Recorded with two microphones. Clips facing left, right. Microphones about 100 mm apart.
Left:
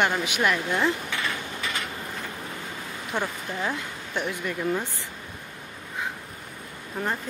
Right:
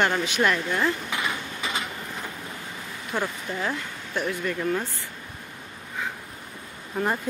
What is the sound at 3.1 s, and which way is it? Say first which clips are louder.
A woman's voice: right 1 dB; 20° left (ahead or behind).